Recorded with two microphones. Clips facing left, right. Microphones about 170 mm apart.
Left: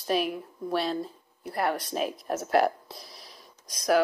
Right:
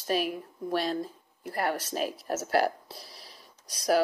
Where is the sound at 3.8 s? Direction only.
35° right (ahead or behind).